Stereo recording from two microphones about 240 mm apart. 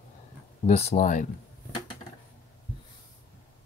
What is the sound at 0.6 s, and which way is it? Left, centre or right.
Speech, left.